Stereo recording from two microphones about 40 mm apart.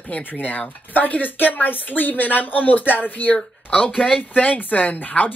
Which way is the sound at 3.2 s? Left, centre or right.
Left.